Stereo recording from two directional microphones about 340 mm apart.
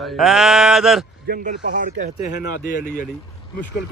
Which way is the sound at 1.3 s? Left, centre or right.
Right.